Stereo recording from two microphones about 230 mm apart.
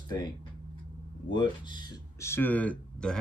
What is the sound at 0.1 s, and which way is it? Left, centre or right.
Speech, centre.